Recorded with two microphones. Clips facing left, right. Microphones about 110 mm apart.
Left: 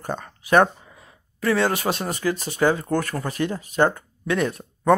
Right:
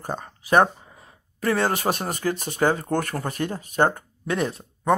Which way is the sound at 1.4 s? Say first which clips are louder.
Left 1 dB; 45° right (ahead or behind).